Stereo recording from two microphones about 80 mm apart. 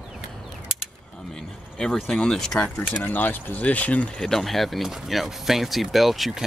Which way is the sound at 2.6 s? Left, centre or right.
Centre.